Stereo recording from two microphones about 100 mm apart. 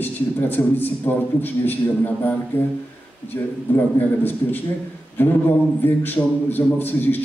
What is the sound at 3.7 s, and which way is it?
Speech, 20° left (ahead or behind).